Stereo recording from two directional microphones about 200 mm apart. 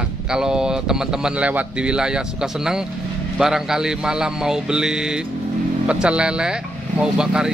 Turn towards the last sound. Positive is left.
turn(degrees=-5)  # may be behind; listen again after turning